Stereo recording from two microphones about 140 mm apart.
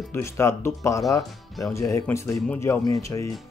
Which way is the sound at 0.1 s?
20° left (ahead or behind).